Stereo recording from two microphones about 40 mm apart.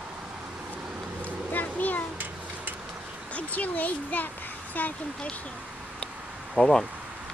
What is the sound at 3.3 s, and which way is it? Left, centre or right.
A child's voice, left.